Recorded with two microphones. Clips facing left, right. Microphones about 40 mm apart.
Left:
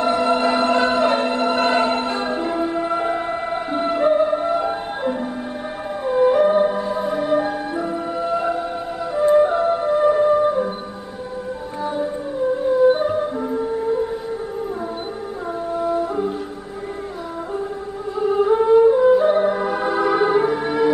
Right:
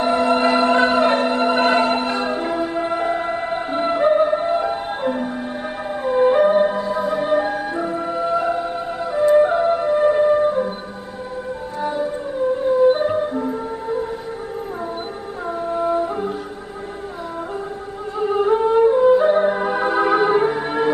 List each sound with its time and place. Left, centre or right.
0.0 s music: right
2.7 s music: centre
3.1 s music: centre
6.1 s music: right
7.4 s music: centre
12.9 s music: centre
13.3 s music: centre
15.7 s music: right
16.0 s music: centre
18.2 s music: centre